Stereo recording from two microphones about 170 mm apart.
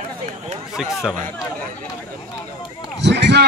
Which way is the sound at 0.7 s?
5° right (ahead or behind).